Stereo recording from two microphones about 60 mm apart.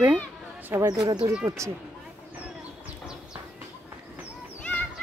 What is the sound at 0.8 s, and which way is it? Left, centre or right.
Speech, right.